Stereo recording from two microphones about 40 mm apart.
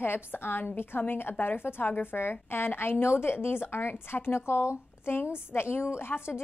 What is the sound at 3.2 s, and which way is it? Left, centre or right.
Speech, left.